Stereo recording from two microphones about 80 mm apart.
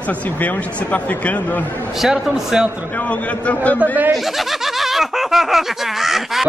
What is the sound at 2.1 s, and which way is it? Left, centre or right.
Speech, centre.